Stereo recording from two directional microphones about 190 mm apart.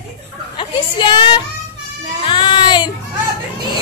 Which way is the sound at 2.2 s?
25° left (ahead or behind).